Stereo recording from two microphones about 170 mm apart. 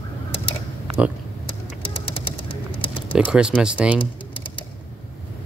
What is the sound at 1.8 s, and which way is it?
Bird, 30° left (ahead or behind).